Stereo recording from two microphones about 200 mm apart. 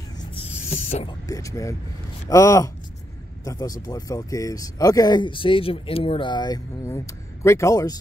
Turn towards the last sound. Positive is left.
turn(degrees=15)  # may be behind; listen again after turning